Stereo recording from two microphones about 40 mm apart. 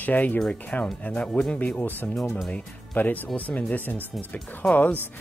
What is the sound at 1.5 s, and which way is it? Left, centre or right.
Speech, left.